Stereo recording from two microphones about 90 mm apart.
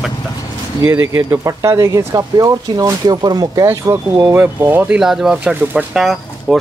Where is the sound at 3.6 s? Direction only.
30° right (ahead or behind).